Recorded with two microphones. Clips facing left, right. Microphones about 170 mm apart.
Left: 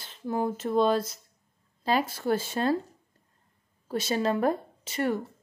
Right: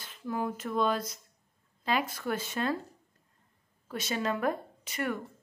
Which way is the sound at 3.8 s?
35° left (ahead or behind).